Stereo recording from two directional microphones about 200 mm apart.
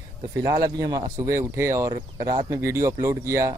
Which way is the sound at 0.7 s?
20° right (ahead or behind).